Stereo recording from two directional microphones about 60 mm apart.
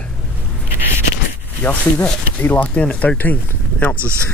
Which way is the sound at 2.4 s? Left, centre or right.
Left.